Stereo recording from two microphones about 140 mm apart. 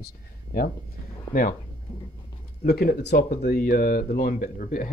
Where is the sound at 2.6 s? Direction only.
90° left.